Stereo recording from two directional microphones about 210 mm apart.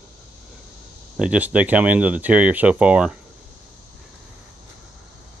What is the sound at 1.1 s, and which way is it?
Speech, 5° right (ahead or behind).